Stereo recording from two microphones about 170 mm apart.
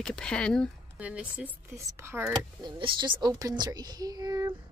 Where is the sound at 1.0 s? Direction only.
5° right (ahead or behind).